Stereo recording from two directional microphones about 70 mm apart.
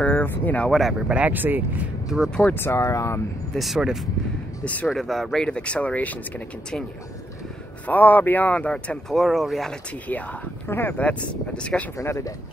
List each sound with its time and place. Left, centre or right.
0.0 s speech: left
0.7 s speech: centre
1.0 s speech: centre
2.0 s speech: centre
2.4 s speech: left
3.5 s speech: centre; by 6.1 s left
7.8 s speech: left; by 9.8 s centre
10.7 s speech: left
11.0 s speech: centre
12.0 s speech: left